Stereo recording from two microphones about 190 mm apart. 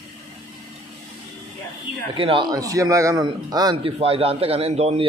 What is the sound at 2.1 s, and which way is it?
A man's voice, 25° right (ahead or behind).